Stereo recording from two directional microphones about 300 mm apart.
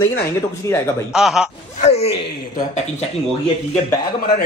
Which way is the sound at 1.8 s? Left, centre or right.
Left.